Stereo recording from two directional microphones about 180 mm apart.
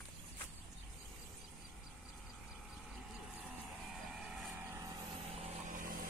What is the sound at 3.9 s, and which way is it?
Vehicle, 5° right (ahead or behind).